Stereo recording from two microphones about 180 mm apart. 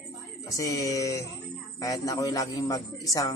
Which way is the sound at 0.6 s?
20° left (ahead or behind).